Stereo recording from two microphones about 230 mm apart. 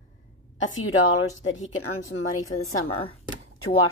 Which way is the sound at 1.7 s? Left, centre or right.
Left.